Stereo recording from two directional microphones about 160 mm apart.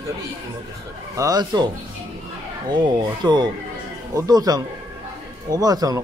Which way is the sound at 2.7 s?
25° right (ahead or behind).